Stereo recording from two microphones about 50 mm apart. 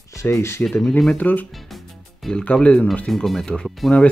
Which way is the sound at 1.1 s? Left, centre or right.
Left.